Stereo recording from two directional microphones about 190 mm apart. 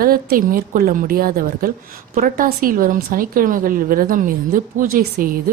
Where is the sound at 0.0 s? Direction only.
50° right (ahead or behind).